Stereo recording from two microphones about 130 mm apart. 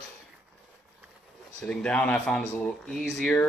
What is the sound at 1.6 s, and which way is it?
Speech, 10° left (ahead or behind).